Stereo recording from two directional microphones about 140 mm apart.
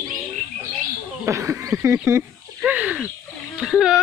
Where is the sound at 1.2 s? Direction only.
20° right (ahead or behind).